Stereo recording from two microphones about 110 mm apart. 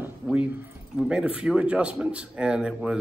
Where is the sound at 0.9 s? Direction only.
5° right (ahead or behind).